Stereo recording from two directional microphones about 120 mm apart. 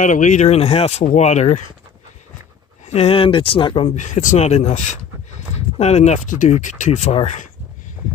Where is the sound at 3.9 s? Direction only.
85° left.